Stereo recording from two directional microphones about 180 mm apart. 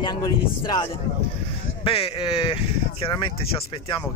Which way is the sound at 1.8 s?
30° left (ahead or behind).